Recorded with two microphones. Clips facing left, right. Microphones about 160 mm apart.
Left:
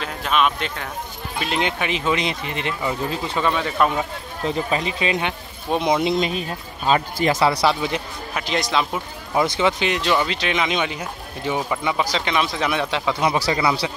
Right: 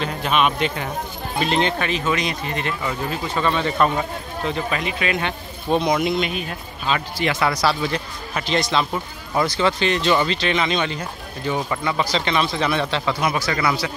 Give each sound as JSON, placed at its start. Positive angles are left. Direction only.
{"t": 0.0, "sound": "speech", "side_deg": 0}
{"t": 1.4, "sound": "speech", "side_deg": 10}
{"t": 3.5, "sound": "speech", "side_deg": 5}
{"t": 4.5, "sound": "speech", "side_deg": 30}
{"t": 5.2, "sound": "speech", "side_deg": 15}
{"t": 8.4, "sound": "a man's voice", "side_deg": 10}
{"t": 13.2, "sound": "speech", "side_deg": 25}